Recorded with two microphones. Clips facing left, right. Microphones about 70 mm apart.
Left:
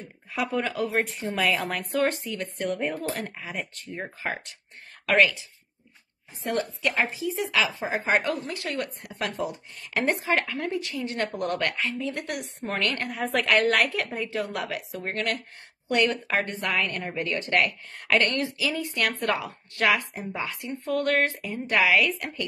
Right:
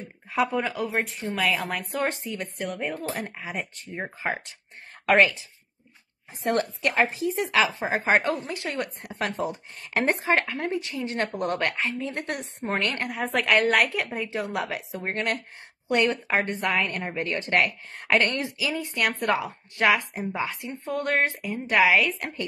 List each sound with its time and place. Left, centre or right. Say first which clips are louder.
0.3 s speech: right 4 dB; right
0.6 s speech: left 1 dB; centre
2.0 s a woman's voice: left 1 dB; right
2.6 s speech: left 3 dB; centre
3.2 s a woman's voice: right 1 dB; centre
6.9 s speech: right 4 dB; right
7.9 s a woman's voice: right 1 dB; right
13.1 s a woman's voice: right 1 dB; centre